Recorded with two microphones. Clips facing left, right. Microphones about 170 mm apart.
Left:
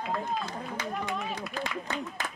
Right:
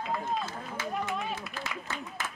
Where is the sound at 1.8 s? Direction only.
15° left (ahead or behind).